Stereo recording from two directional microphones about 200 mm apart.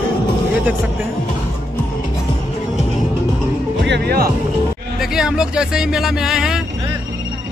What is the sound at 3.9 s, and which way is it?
Speech, 50° right (ahead or behind).